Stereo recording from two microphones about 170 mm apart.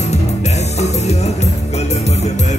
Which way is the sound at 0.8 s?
40° left (ahead or behind).